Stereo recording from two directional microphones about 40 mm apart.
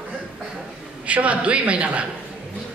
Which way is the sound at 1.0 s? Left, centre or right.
Right.